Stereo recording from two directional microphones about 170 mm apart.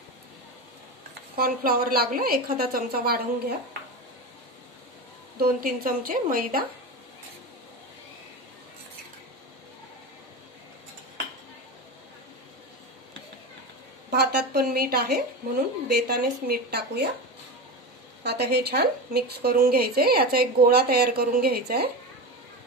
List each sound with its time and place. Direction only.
1.3 s a woman's voice: 60° right (ahead or behind)
5.4 s a woman's voice: 55° right (ahead or behind)
14.1 s a woman's voice: 70° right (ahead or behind)
18.2 s a woman's voice: 75° right (ahead or behind)